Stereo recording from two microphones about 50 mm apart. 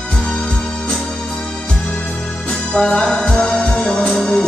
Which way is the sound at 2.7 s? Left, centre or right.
Centre.